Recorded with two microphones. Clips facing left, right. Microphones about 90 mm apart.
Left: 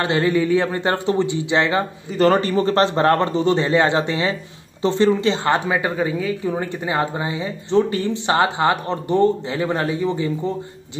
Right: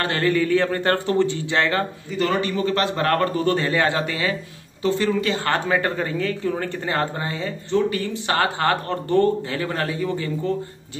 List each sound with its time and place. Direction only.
0.0 s a woman's voice: 15° left (ahead or behind)
2.1 s a woman's voice: 40° left (ahead or behind); by 7.5 s 15° left (ahead or behind)
7.7 s speech: 30° left (ahead or behind)